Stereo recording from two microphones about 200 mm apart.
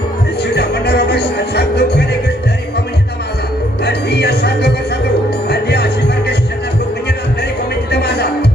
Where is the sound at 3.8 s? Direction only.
55° left (ahead or behind).